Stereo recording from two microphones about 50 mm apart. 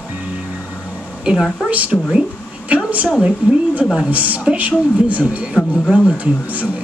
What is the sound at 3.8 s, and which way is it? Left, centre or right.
Speech, centre.